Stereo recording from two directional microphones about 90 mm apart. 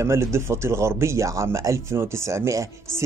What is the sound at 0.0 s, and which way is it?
Speech, 30° right (ahead or behind).